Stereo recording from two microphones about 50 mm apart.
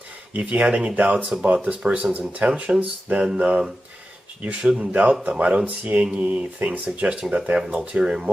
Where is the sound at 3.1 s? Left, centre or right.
Centre.